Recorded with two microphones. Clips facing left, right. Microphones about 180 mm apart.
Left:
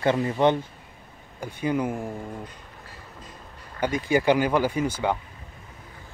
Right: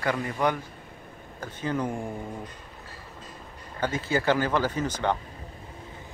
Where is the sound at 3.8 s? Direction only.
15° left (ahead or behind).